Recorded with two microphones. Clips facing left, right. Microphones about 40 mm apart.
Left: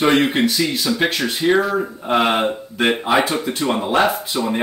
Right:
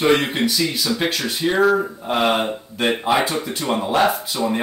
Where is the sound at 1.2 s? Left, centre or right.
Centre.